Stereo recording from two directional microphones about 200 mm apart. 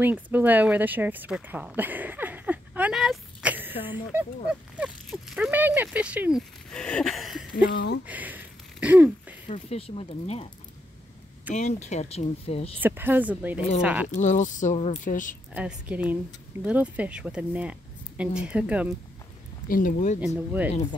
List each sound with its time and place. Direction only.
0.0 s speech: 10° right (ahead or behind)
7.6 s speech: 55° left (ahead or behind)
8.1 s a sound: 10° right (ahead or behind)
9.5 s speech: 30° left (ahead or behind)
11.5 s speech: 35° left (ahead or behind)
12.8 s speech: 10° right (ahead or behind)
14.1 s speech: 40° left (ahead or behind)
15.5 s speech: 5° right (ahead or behind)
19.7 s speech: 40° left (ahead or behind)
20.3 s speech: 5° right (ahead or behind)